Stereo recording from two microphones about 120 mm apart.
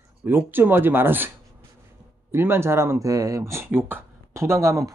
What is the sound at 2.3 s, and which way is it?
Speech, 20° right (ahead or behind).